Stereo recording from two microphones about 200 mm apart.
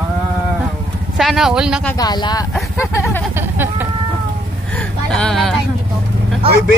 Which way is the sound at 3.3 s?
10° right (ahead or behind).